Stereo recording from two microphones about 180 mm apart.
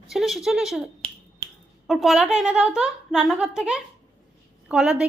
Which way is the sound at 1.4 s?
20° right (ahead or behind).